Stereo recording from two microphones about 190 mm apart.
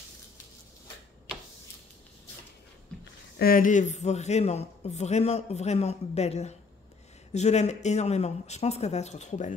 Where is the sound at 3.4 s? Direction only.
45° left (ahead or behind).